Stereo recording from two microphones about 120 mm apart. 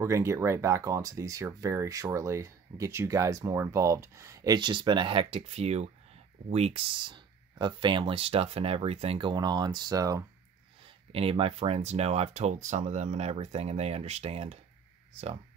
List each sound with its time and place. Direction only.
0.0 s speech: 25° right (ahead or behind)
4.6 s speech: 40° right (ahead or behind)
9.3 s speech: 35° right (ahead or behind)
11.1 s speech: 55° right (ahead or behind)